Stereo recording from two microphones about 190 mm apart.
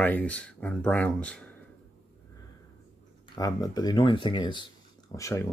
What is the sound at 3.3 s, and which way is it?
Speech, 20° left (ahead or behind).